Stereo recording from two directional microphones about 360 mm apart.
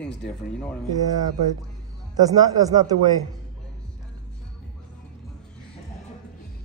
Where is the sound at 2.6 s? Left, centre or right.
Centre.